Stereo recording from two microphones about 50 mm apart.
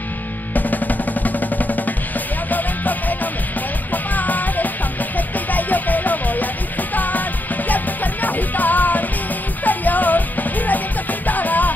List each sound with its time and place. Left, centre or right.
0.6 s music: left